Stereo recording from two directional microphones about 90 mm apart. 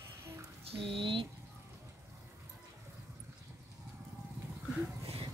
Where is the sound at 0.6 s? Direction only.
90° right; by 1.2 s 75° right (ahead or behind).